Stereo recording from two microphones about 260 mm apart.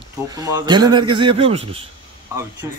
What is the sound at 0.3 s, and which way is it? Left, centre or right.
Speech, centre.